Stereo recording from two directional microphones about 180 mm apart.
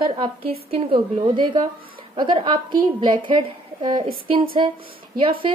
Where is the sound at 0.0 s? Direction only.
30° right (ahead or behind).